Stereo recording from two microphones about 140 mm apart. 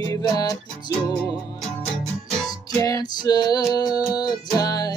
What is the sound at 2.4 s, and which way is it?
Music, 25° left (ahead or behind).